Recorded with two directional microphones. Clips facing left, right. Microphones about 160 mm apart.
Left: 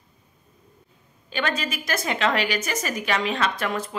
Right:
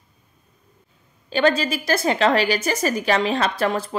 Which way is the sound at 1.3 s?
35° right (ahead or behind).